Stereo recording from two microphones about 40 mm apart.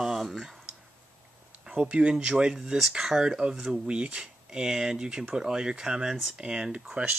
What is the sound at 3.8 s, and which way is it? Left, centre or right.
Speech, right.